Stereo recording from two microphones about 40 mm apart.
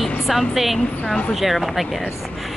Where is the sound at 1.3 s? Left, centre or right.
Centre.